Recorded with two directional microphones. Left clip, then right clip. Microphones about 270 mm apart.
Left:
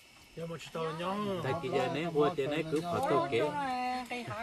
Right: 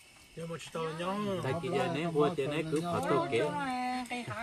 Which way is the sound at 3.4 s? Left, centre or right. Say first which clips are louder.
Even; left.